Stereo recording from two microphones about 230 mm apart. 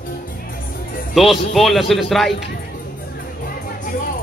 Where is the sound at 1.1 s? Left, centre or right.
Centre.